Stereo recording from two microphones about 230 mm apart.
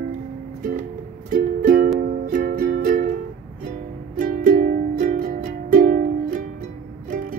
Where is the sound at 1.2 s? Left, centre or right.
Right.